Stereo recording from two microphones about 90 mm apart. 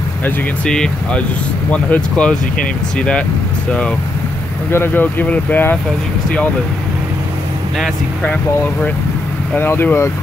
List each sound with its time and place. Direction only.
0.7 s speech: 10° left (ahead or behind)
4.6 s speech: 25° left (ahead or behind)
9.6 s speech: 25° left (ahead or behind)